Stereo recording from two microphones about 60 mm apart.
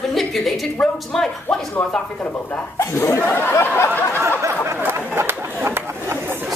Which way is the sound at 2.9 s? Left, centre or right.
Left.